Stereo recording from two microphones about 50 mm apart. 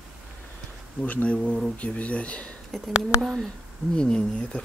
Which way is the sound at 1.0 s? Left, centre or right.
Left.